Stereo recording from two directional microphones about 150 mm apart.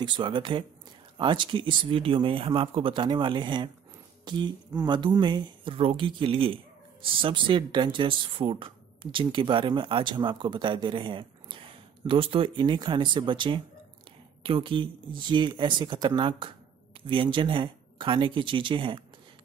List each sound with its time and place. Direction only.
0.0 s speech: 30° right (ahead or behind)